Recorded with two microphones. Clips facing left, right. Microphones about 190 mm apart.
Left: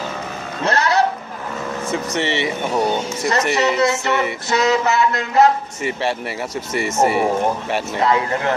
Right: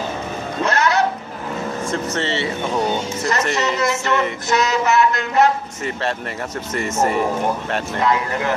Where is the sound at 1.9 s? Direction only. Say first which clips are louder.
Left 2 dB; 15° left (ahead or behind).